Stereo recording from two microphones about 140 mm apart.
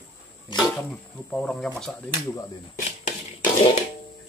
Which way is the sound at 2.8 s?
55° left (ahead or behind).